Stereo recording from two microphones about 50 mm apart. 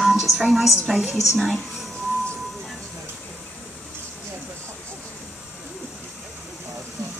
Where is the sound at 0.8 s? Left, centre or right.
Centre.